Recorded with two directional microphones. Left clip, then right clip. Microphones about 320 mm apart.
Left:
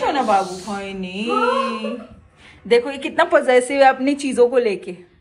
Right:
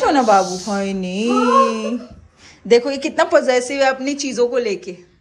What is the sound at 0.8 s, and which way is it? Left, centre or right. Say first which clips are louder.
Speech: right 6 dB; right.